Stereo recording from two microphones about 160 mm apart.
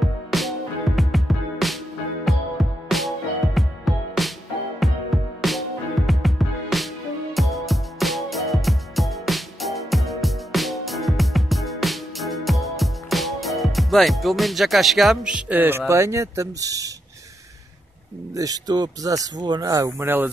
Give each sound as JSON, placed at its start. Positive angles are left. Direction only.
{"t": 0.0, "sound": "music", "side_deg": 0}
{"t": 18.3, "sound": "speech", "side_deg": -20}